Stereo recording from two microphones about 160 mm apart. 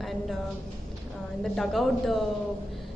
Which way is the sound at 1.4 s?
Centre (ahead or behind).